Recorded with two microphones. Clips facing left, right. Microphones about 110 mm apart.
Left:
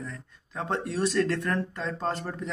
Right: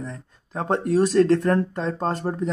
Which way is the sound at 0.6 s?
40° right (ahead or behind).